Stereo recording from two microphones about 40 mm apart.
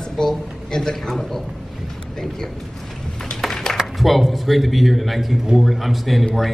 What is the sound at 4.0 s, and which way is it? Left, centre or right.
A man's voice, centre.